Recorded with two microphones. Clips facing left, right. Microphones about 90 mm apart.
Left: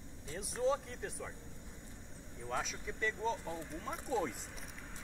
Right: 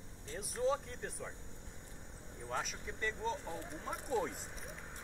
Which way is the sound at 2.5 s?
Centre (ahead or behind).